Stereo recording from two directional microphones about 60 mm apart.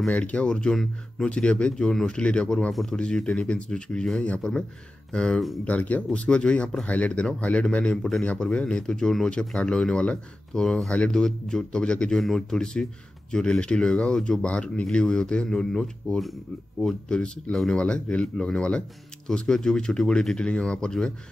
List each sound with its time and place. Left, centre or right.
0.2 s speech: centre
2.7 s speech: centre
3.0 s speech: centre
12.2 s speech: centre